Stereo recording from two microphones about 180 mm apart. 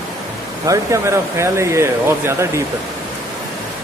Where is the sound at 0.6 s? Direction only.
15° right (ahead or behind).